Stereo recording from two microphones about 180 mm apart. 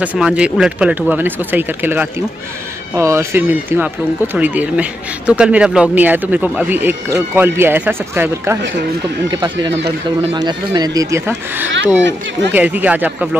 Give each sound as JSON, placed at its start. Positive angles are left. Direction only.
{"t": 0.0, "sound": "speech", "side_deg": -5}
{"t": 9.3, "sound": "speech", "side_deg": -25}
{"t": 12.0, "sound": "speech", "side_deg": -80}
{"t": 12.5, "sound": "speech", "side_deg": -10}